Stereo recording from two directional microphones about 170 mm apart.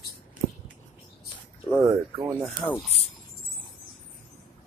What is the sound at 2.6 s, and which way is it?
Speech, 10° left (ahead or behind).